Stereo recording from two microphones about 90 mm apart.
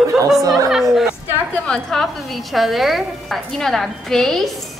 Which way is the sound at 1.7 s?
5° left (ahead or behind).